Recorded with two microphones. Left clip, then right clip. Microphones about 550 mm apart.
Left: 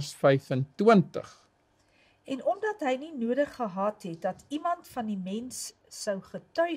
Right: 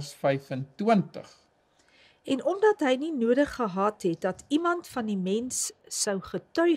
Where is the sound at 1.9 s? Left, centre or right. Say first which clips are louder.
Right 6 dB; right.